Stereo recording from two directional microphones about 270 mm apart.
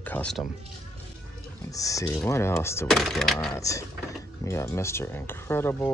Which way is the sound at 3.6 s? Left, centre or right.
Centre.